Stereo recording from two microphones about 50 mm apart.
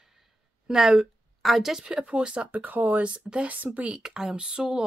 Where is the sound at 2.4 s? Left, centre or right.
Right.